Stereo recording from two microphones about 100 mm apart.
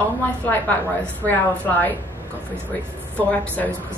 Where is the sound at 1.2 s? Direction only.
15° left (ahead or behind).